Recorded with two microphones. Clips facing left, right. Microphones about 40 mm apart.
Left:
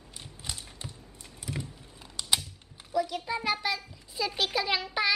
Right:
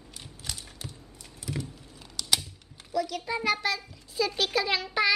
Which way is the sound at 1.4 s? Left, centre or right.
Centre.